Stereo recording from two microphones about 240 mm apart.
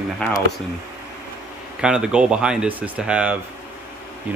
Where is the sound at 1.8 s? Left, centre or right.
Centre.